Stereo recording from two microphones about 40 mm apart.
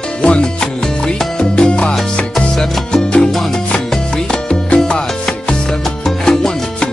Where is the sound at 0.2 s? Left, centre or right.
Left.